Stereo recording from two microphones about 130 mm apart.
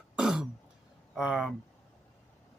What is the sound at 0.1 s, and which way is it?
Throat clearing, 5° right (ahead or behind).